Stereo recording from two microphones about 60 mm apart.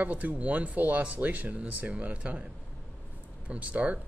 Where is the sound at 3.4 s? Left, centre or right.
Right.